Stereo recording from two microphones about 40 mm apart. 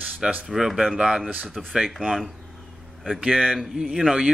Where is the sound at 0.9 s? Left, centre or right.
Centre.